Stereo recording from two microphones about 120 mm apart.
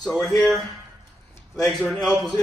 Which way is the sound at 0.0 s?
5° left (ahead or behind).